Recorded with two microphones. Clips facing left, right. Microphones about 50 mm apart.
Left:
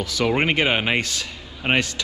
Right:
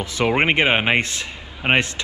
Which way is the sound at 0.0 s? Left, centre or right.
Right.